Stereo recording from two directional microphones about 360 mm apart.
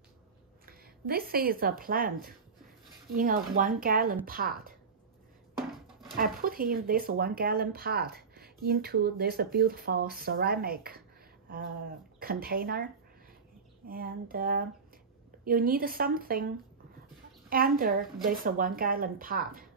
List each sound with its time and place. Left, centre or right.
0.7 s a woman's voice: right
5.6 s a sound: centre
6.1 s speech: right
12.2 s speech: right
13.8 s speech: right
17.5 s speech: right